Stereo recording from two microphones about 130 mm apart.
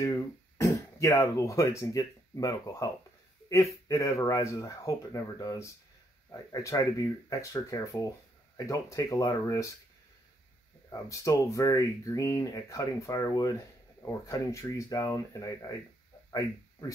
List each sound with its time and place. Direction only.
0.6 s speech: 25° left (ahead or behind)
10.9 s speech: 25° left (ahead or behind)
16.3 s a sound: 25° left (ahead or behind)